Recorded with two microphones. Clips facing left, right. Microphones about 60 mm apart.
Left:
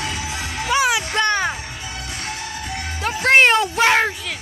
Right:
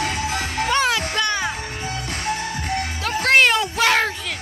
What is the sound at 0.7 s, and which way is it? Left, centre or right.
Music, centre.